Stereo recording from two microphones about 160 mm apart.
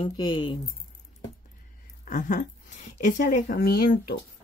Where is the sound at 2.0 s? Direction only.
50° left (ahead or behind); by 4.2 s 70° left (ahead or behind).